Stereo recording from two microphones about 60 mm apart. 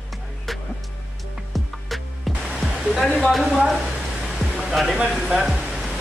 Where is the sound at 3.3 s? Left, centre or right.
Centre.